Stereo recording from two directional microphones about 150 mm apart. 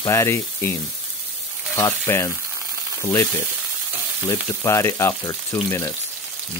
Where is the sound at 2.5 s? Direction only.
25° right (ahead or behind).